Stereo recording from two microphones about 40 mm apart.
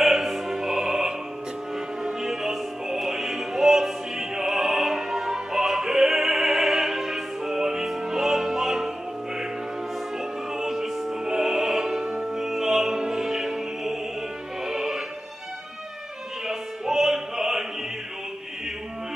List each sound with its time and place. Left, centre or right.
0.0 s opera: centre
2.0 s music: centre
10.1 s music: centre
12.0 s music: centre
12.3 s music: centre
16.4 s music: centre